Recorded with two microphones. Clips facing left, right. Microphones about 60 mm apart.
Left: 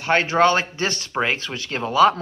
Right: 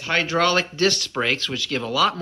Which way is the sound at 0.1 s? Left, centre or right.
Left.